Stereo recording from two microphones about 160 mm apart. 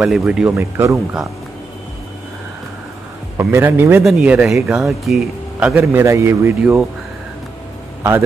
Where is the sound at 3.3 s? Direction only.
15° right (ahead or behind).